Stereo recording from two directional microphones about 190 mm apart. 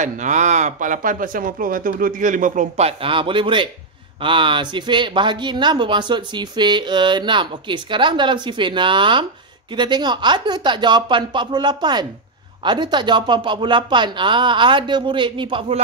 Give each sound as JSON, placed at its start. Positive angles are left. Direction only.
{"t": 0.0, "sound": "speech", "side_deg": -40}
{"t": 3.0, "sound": "speech", "side_deg": -25}